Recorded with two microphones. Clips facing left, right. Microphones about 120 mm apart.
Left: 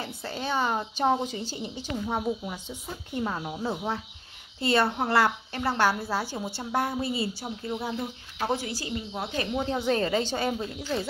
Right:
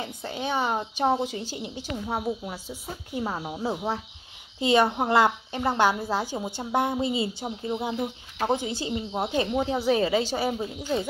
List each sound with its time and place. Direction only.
0.0 s a woman's voice: 15° right (ahead or behind)